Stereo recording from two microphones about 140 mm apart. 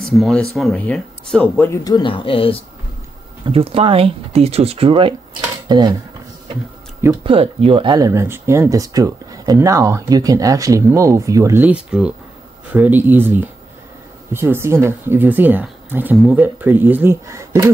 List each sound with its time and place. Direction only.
0.0 s speech: centre (ahead or behind)
1.7 s speech: 30° left (ahead or behind)
3.4 s speech: 45° right (ahead or behind)
7.2 s speech: 40° right (ahead or behind); by 11.6 s 20° right (ahead or behind)
11.6 s speech: 10° right (ahead or behind)